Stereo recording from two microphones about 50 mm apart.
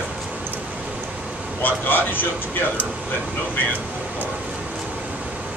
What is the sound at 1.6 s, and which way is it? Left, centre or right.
Speech, left.